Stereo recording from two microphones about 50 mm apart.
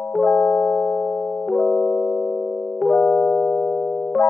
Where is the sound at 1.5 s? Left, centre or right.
Centre.